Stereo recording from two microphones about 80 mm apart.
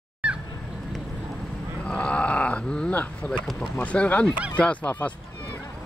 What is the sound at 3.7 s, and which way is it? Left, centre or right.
Speech, centre.